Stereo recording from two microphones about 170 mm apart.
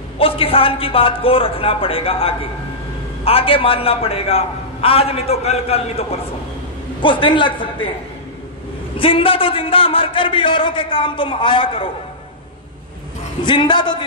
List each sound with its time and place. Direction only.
0.2 s a man's voice: 30° left (ahead or behind)
8.9 s a man's voice: 30° left (ahead or behind)
13.5 s a man's voice: 25° left (ahead or behind)